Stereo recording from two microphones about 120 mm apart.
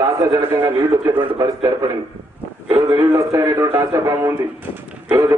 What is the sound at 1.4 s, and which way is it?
A man's voice, 30° right (ahead or behind).